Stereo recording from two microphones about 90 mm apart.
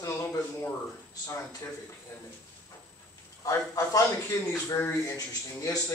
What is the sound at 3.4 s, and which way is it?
Speech, 40° left (ahead or behind).